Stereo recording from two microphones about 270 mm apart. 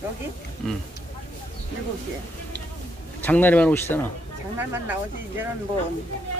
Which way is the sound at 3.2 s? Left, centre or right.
Centre.